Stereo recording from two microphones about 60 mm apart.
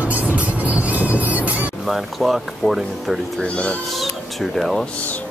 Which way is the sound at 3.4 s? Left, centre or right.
Centre.